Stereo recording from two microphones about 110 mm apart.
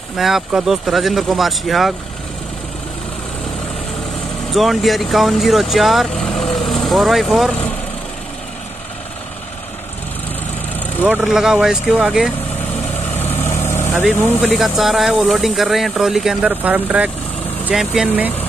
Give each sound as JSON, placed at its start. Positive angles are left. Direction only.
{"t": 0.2, "sound": "speech", "side_deg": -5}
{"t": 4.5, "sound": "speech", "side_deg": 0}
{"t": 11.1, "sound": "speech", "side_deg": -5}
{"t": 13.2, "sound": "vehicle", "side_deg": 20}
{"t": 14.4, "sound": "speech", "side_deg": 0}